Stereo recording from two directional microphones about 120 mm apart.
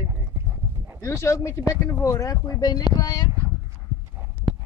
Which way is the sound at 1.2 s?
25° left (ahead or behind).